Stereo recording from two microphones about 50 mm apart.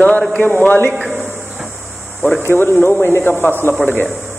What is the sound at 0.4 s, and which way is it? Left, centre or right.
Speech, left.